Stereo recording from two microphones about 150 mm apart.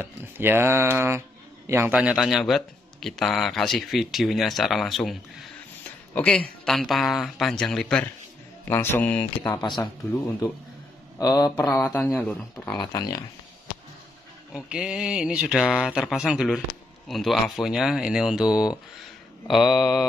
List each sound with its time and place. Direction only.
0.0 s a man's voice: 15° right (ahead or behind); by 9.3 s 10° left (ahead or behind)
11.1 s speech: 25° left (ahead or behind); by 12.7 s 10° left (ahead or behind)
12.7 s speech: 30° left (ahead or behind)
14.5 s a man's voice: 5° right (ahead or behind)